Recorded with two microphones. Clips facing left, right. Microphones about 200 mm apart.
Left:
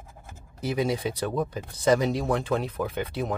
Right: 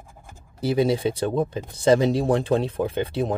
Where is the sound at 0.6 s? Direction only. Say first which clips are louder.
Right 6 dB; 30° right (ahead or behind).